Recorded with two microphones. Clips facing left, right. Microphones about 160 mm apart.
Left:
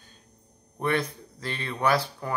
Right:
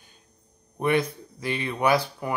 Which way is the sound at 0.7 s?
15° right (ahead or behind).